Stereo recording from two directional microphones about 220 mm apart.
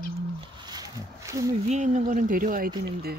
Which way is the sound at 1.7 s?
35° right (ahead or behind).